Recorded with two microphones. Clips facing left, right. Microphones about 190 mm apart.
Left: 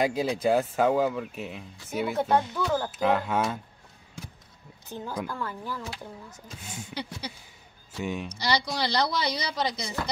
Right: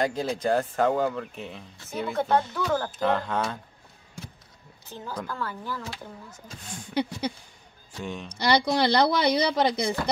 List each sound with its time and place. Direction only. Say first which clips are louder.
0.0 s speech: left 1 dB; 5° left (ahead or behind)
4.8 s speech: left 1 dB; 15° left (ahead or behind)
7.2 s speech: right 9 dB; 55° right (ahead or behind)
7.9 s speech: left 3 dB; 5° left (ahead or behind)
8.3 s speech: right 9 dB; 55° right (ahead or behind)